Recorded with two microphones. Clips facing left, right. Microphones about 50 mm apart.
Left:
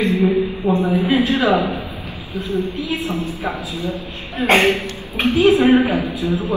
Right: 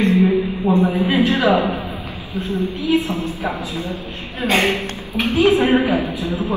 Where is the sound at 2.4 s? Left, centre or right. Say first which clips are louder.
Right 1 dB; right.